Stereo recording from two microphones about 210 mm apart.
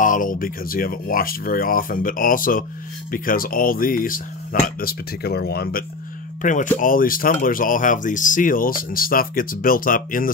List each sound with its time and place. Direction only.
0.0 s speech: 40° left (ahead or behind)